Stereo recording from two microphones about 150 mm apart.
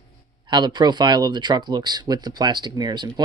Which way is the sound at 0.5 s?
30° right (ahead or behind).